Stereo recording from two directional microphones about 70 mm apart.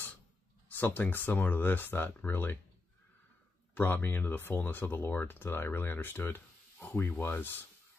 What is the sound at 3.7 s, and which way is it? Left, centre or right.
Speech, left.